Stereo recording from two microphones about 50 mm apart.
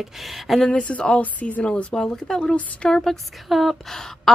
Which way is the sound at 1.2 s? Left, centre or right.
Left.